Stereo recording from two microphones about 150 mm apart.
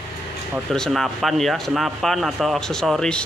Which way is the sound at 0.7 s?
5° left (ahead or behind).